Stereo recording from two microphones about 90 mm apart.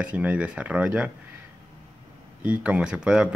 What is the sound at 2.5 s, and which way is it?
Speech, 10° right (ahead or behind).